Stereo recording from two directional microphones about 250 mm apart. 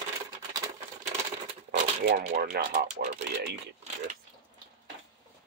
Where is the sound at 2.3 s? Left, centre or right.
Right.